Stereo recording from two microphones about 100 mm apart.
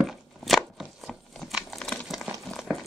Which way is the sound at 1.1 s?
5° left (ahead or behind).